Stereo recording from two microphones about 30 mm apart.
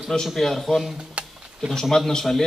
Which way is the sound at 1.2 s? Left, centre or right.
Right.